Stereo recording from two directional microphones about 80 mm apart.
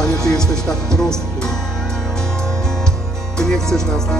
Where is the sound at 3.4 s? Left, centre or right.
Centre.